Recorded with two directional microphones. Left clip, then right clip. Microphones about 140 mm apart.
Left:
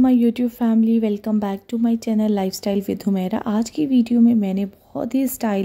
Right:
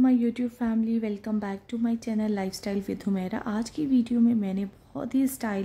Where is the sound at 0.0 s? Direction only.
45° left (ahead or behind).